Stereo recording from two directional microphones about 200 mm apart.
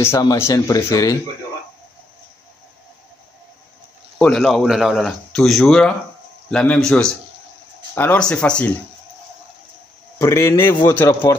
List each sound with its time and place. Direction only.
0.0 s speech: 15° left (ahead or behind)
4.2 s a man's voice: centre (ahead or behind)
10.1 s speech: 15° left (ahead or behind)